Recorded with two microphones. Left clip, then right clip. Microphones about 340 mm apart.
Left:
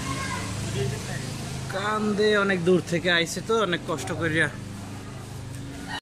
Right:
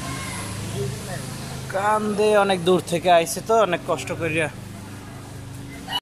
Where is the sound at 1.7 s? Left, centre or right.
Centre.